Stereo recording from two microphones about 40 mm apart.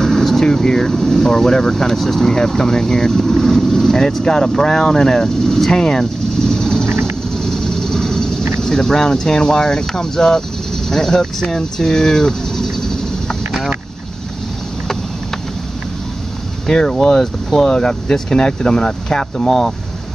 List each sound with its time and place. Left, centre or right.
0.0 s speech: centre
7.0 s a sound: centre
8.5 s speech: centre
10.9 s a sound: centre
16.6 s speech: centre
17.7 s speech: centre